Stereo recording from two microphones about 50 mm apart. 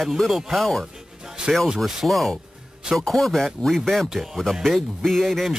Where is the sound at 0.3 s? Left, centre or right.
Centre.